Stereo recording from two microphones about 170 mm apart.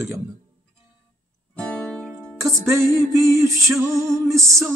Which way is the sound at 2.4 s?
15° right (ahead or behind).